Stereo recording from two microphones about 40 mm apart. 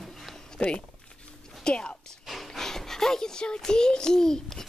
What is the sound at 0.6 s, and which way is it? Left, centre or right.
Speech, left.